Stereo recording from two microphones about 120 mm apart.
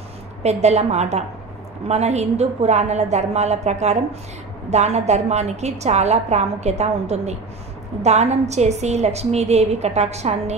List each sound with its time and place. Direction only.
0.4 s a woman's voice: 65° right (ahead or behind)